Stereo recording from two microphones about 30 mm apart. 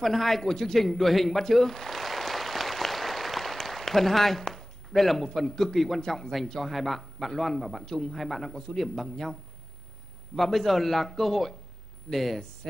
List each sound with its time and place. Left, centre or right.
0.0 s a man's voice: centre
6.6 s a man's voice: centre
7.8 s a man's voice: centre
8.2 s a man's voice: centre